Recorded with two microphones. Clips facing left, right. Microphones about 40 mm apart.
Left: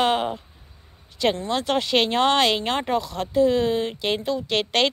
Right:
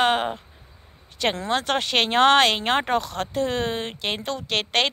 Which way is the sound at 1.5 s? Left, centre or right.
Right.